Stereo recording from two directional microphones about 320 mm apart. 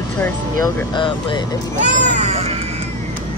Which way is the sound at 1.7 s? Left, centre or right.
Right.